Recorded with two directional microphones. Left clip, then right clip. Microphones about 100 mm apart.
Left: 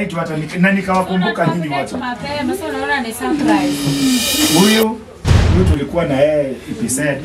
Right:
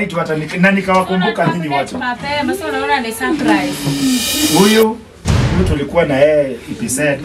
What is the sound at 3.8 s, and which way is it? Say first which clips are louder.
Speech: even; centre (ahead or behind).